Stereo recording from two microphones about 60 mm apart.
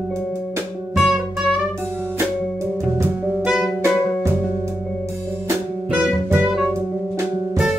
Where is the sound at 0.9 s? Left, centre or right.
Centre.